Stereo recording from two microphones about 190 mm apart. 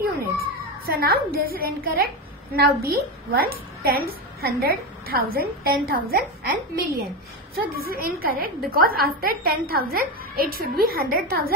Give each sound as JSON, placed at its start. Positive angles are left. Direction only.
{"t": 0.4, "sound": "a child's voice", "side_deg": -55}